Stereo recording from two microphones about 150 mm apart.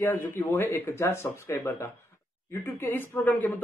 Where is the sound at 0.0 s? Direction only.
15° left (ahead or behind).